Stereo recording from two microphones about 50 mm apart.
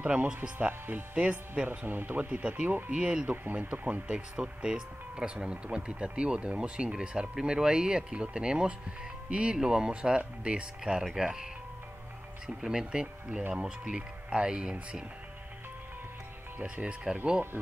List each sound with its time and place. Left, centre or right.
0.0 s speech: right
3.3 s speech: right; by 11.4 s centre
12.4 s speech: centre
17.1 s speech: centre